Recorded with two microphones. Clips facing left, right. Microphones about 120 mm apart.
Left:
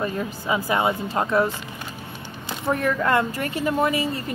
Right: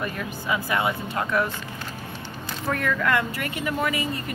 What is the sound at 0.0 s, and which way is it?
Speech, 25° left (ahead or behind).